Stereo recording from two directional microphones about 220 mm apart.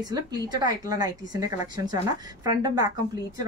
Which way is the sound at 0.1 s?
20° right (ahead or behind).